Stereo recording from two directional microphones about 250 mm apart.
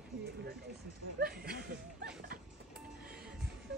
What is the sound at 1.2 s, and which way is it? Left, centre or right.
Speech, right.